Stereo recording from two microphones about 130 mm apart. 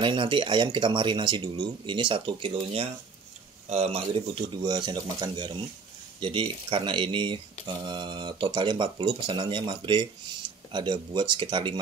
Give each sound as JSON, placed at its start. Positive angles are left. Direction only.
{"t": 0.0, "sound": "speech", "side_deg": -40}